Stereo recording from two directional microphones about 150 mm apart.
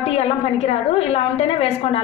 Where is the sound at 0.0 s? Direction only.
45° left (ahead or behind).